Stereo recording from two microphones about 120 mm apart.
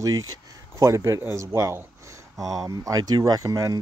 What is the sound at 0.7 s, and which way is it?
Speech, 25° right (ahead or behind).